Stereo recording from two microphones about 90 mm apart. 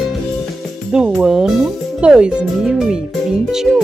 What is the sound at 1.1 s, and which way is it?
Speech, 5° right (ahead or behind).